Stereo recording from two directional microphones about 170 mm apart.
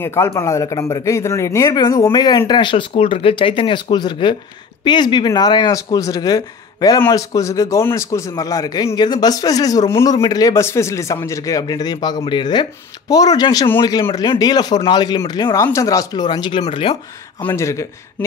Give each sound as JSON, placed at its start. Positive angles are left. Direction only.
{"t": 0.0, "sound": "a man's voice", "side_deg": 15}
{"t": 17.4, "sound": "speech", "side_deg": 15}